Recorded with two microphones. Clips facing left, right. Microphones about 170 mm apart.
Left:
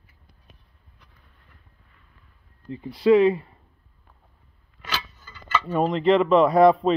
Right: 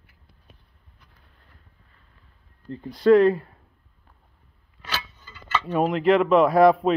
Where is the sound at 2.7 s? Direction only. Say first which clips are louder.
Right 1 dB; 5° left (ahead or behind).